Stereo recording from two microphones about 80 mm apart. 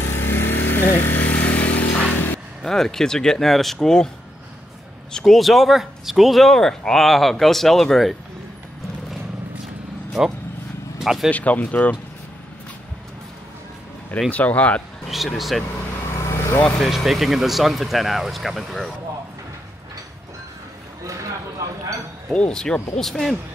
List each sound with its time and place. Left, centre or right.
0.0 s vehicle: left
1.0 s a sound: left
2.6 s speech: centre
5.1 s speech: centre
11.0 s speech: centre
11.2 s speech: centre
14.3 s speech: centre
15.0 s speech: centre
16.2 s vehicle: left
16.6 s speech: centre
16.9 s speech: centre
21.0 s chink: right
22.3 s speech: centre